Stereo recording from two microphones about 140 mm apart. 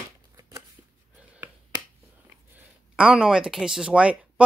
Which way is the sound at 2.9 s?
5° right (ahead or behind).